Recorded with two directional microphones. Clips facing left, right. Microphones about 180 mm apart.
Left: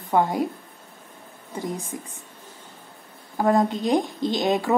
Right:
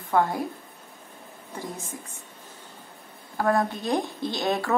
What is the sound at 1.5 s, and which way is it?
Speech, 15° left (ahead or behind).